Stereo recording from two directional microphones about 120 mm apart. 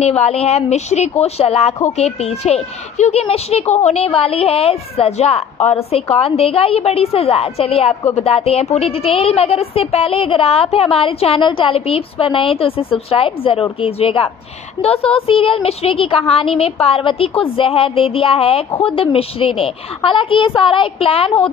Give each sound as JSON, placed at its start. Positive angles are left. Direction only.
{"t": 0.0, "sound": "a child's voice", "side_deg": 60}